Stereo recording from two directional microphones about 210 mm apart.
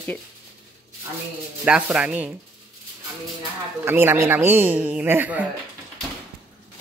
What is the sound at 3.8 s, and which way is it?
A man's voice, 10° right (ahead or behind).